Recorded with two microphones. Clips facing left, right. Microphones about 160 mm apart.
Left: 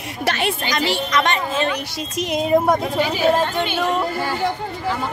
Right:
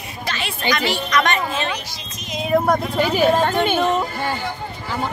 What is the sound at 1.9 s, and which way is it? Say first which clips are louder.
Speech: left 9 dB; 70° left (ahead or behind).